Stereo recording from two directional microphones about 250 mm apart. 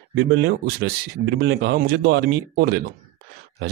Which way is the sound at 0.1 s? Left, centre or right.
Right.